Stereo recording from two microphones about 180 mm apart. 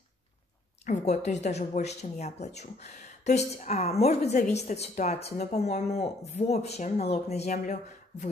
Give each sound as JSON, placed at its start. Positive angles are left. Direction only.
{"t": 0.8, "sound": "a woman's voice", "side_deg": 40}